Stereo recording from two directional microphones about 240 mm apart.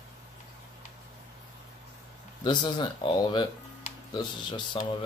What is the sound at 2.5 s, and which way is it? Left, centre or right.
Speech, centre.